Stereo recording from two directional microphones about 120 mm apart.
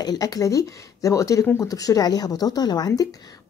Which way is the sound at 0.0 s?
35° left (ahead or behind).